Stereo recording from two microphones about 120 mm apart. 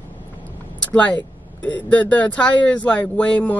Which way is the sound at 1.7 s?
10° left (ahead or behind).